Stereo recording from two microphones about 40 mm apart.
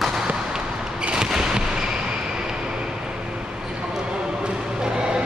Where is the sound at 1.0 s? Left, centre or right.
Right.